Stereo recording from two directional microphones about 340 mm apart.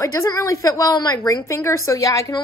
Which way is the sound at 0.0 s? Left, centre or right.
Centre.